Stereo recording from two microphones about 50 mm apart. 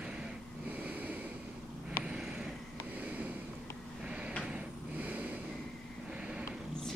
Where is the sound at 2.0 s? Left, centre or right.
Centre.